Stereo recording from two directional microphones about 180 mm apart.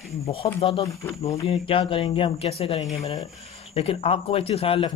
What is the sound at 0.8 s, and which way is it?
Speech, 20° left (ahead or behind).